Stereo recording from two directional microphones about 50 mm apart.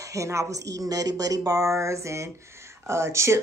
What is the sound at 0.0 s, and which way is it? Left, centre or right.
Speech, right.